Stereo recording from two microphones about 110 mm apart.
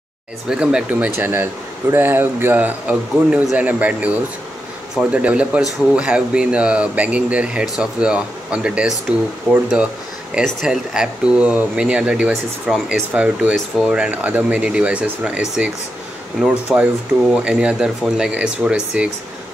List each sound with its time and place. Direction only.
0.5 s speech: 5° right (ahead or behind)
0.9 s speech: 20° right (ahead or behind)
16.7 s speech: 5° right (ahead or behind)